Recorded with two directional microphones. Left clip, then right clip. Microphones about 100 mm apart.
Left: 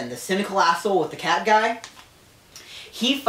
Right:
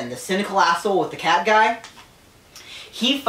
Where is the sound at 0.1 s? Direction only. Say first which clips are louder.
Right 2 dB; 10° left (ahead or behind).